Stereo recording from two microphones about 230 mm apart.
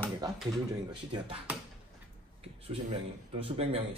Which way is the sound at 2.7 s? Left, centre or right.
Right.